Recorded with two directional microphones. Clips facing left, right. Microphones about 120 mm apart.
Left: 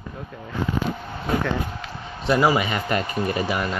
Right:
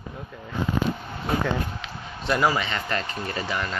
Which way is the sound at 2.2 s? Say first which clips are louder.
Left 4 dB; 5° left (ahead or behind).